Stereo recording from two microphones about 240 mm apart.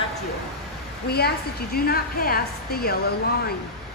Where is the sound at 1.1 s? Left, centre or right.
Left.